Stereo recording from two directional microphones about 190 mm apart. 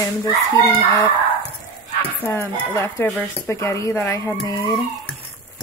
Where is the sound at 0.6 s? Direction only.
20° left (ahead or behind).